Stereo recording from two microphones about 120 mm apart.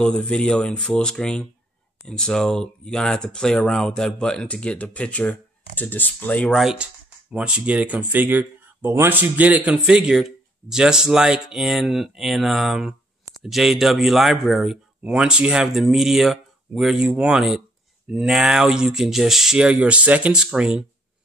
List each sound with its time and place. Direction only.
0.0 s speech: 5° left (ahead or behind)
6.6 s speech: 5° right (ahead or behind)